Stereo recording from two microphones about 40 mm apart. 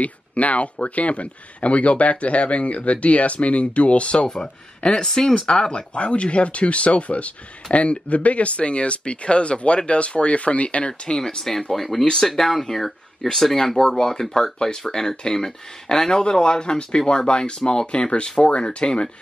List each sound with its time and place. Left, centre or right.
0.0 s speech: left
5.0 s speech: centre; by 10.9 s left
10.9 s speech: centre